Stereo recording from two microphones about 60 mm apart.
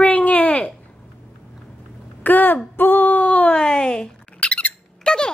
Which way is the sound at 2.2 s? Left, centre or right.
Left.